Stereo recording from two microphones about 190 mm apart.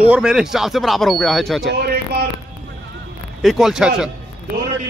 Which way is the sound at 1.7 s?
55° right (ahead or behind).